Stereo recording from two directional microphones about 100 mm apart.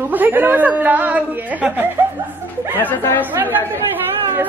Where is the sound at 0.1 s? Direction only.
20° right (ahead or behind).